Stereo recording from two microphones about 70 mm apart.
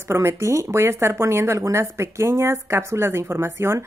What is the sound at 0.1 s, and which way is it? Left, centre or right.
Speech, right.